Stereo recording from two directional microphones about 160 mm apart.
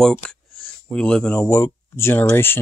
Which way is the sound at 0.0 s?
5° left (ahead or behind).